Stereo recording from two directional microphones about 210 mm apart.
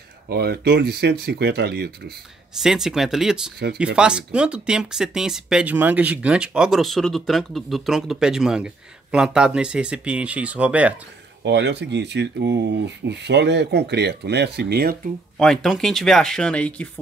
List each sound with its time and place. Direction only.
0.3 s speech: 50° right (ahead or behind)
2.6 s speech: centre (ahead or behind)
11.4 s speech: 55° right (ahead or behind)
15.3 s speech: centre (ahead or behind)